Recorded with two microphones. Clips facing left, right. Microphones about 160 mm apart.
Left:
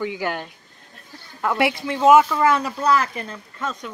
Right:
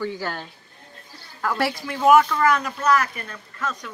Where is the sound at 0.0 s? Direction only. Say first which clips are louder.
Left 3 dB; 15° left (ahead or behind).